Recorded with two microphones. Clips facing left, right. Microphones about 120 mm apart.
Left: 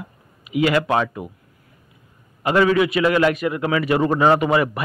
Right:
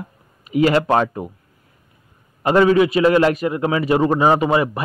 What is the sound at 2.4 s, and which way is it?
Speech, 30° right (ahead or behind).